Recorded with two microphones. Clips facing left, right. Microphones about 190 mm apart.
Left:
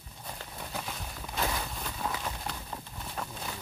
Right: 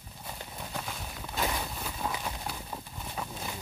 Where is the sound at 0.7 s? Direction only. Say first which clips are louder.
Even; centre (ahead or behind).